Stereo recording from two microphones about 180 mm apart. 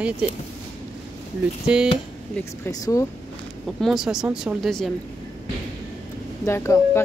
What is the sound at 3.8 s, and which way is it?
Speech, 5° right (ahead or behind).